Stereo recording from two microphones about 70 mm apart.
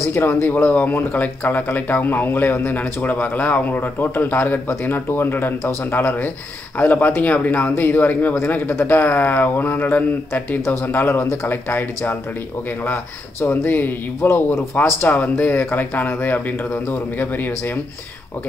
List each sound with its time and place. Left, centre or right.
0.1 s speech: left
0.5 s speech: left
10.6 s speech: left
15.0 s speech: left